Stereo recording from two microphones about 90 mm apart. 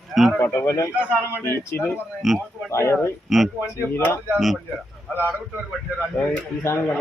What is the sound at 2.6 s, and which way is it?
Speech, 30° left (ahead or behind).